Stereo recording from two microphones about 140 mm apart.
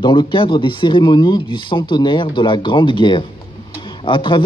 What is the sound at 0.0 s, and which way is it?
Speech, 35° left (ahead or behind).